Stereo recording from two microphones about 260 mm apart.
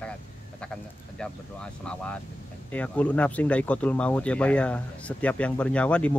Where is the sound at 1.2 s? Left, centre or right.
Centre.